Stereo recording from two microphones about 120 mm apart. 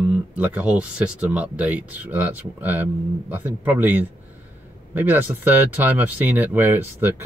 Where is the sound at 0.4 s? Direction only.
10° right (ahead or behind).